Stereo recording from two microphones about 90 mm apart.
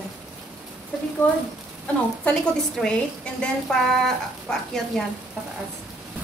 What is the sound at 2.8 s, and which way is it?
Speech, 10° left (ahead or behind).